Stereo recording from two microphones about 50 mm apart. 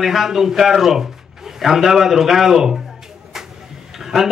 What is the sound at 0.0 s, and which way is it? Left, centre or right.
A man's voice, centre.